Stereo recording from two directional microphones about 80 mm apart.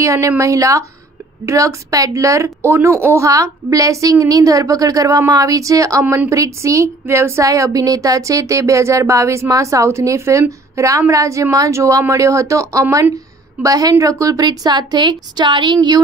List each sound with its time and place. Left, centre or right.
0.0 s a woman's voice: right